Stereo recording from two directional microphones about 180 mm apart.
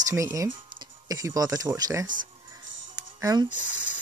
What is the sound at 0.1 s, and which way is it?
Speech, 15° right (ahead or behind).